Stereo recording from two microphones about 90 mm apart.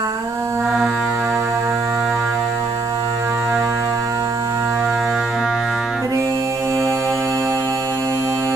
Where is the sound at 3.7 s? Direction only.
30° right (ahead or behind).